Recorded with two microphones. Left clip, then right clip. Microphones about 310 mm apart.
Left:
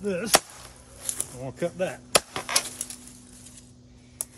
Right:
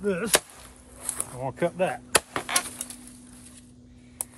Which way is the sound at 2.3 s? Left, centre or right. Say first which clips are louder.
Even; centre.